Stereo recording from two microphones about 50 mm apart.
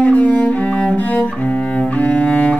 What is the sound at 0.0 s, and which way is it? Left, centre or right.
Cello, left.